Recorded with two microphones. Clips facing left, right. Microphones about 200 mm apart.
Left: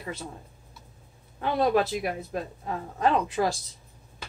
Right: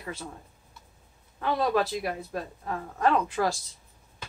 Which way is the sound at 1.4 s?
25° left (ahead or behind).